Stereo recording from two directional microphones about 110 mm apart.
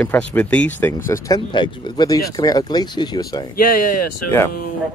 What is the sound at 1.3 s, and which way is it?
Speech, 45° left (ahead or behind).